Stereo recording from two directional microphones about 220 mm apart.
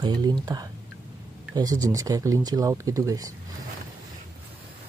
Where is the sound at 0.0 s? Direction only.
20° right (ahead or behind).